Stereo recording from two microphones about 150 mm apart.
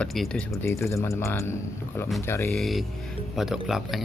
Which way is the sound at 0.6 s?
20° left (ahead or behind).